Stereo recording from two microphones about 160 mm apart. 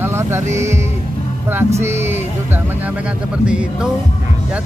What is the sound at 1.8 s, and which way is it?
Speech, 15° right (ahead or behind).